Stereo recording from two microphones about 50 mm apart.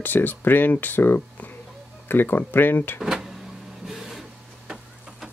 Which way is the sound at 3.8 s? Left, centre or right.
Centre.